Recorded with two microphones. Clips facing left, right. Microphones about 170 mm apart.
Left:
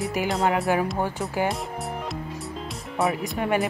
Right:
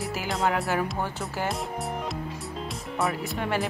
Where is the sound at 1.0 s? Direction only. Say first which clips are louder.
Left 5 dB; 15° left (ahead or behind).